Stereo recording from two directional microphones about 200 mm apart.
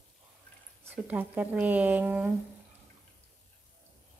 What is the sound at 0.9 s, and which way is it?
Speech, 10° right (ahead or behind).